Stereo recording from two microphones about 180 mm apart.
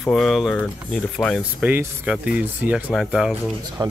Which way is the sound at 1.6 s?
10° right (ahead or behind).